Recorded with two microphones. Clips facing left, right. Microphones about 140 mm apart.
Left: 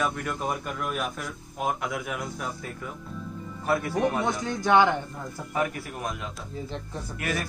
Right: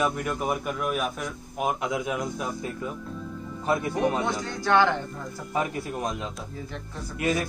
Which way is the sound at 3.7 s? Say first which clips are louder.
Even; 20° right (ahead or behind).